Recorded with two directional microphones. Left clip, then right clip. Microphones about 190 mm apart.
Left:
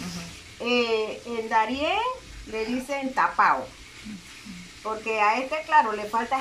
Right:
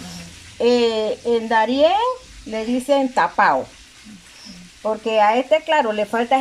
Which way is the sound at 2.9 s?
45° right (ahead or behind).